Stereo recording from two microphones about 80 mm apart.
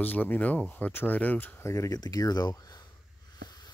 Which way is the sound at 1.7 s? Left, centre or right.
Left.